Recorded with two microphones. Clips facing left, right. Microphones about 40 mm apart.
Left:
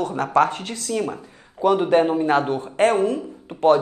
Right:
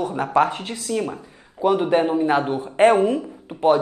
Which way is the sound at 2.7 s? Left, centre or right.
Centre.